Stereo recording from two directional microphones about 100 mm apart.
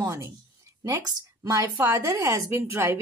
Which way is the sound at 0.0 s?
30° right (ahead or behind).